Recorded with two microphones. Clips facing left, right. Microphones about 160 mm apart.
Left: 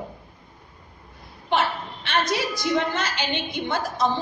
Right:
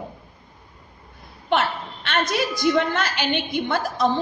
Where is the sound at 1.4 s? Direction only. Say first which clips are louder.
Right 1 dB; 60° right (ahead or behind).